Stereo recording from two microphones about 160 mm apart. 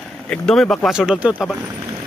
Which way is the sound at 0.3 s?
5° left (ahead or behind).